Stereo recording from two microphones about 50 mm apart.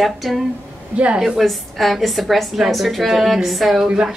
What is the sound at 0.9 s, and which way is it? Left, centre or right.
Speech, right.